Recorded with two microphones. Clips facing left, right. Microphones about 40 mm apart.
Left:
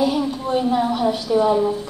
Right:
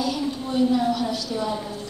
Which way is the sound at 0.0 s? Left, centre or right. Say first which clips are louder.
Left 6 dB; left.